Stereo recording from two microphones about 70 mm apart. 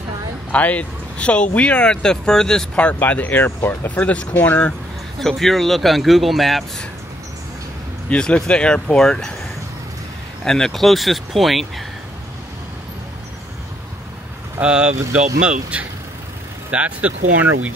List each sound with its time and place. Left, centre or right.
0.5 s speech: left
3.0 s speech: left
5.2 s speech: centre
8.1 s speech: centre
10.4 s speech: centre
14.6 s speech: centre